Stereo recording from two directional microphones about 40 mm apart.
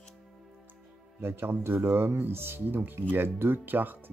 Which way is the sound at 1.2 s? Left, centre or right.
Right.